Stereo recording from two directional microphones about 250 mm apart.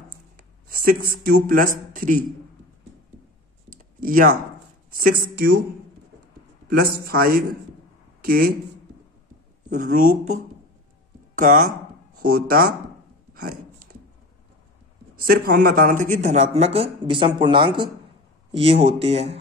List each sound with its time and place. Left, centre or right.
0.8 s speech: right
3.7 s computer keyboard: right
4.9 s speech: right
6.7 s a man's voice: right
9.7 s speech: right
11.3 s speech: right
13.9 s a sound: right
15.1 s speech: right